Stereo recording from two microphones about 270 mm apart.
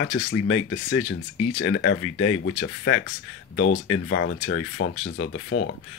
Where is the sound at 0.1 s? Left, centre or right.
Left.